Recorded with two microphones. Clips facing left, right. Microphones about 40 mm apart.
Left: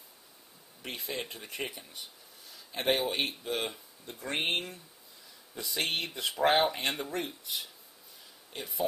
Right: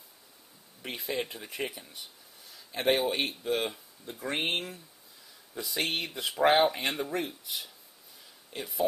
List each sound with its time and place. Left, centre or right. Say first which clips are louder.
0.8 s speech: right 4 dB; centre